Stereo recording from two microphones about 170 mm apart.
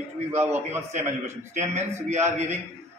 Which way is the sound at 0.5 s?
15° right (ahead or behind).